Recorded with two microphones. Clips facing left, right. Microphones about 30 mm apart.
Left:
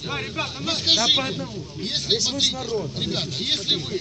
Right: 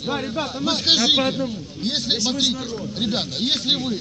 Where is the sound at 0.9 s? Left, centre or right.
Right.